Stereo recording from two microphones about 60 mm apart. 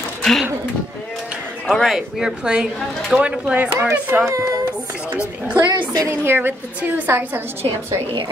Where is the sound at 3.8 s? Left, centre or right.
Right.